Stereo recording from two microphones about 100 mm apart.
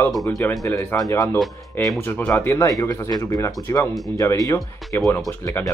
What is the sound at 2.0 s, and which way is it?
Speech, 20° left (ahead or behind).